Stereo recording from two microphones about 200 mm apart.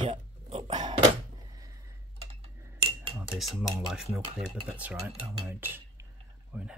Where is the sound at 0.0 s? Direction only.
30° right (ahead or behind).